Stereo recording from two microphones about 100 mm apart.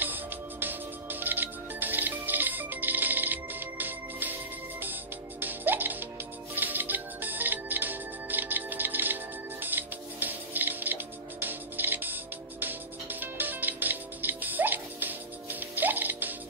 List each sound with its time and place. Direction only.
0.0 s music: 20° right (ahead or behind)
5.4 s music: 20° right (ahead or behind)